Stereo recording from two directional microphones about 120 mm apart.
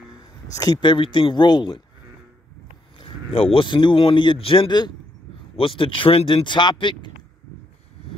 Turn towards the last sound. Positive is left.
turn(degrees=40)  # may be behind; listen again after turning